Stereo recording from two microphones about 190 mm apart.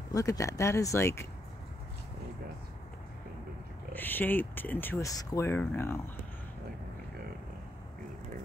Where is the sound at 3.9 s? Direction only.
10° left (ahead or behind).